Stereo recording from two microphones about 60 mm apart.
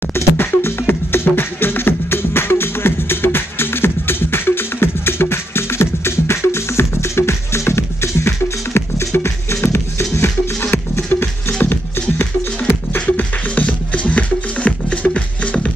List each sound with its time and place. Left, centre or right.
0.1 s music: left
12.6 s music: left